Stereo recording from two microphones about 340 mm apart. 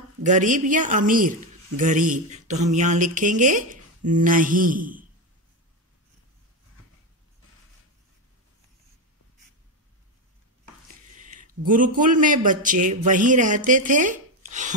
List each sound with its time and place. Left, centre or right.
0.2 s speech: right
11.1 s a man's voice: right